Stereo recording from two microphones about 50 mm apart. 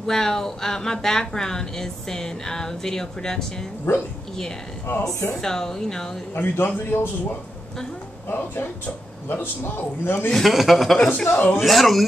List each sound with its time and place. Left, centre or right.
0.0 s speech: centre
3.9 s a woman's voice: left
5.3 s speech: centre
6.3 s speech: left
8.3 s speech: left
10.3 s speech: centre
11.2 s speech: left
11.6 s speech: centre